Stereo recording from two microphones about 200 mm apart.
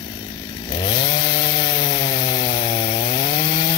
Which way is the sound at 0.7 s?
20° left (ahead or behind).